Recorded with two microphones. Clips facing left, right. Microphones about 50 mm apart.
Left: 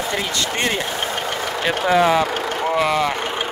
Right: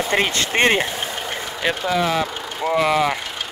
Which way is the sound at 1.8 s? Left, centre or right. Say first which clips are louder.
Left 6 dB; left.